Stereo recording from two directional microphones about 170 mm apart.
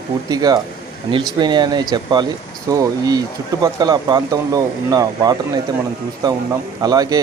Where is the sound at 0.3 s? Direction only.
20° right (ahead or behind).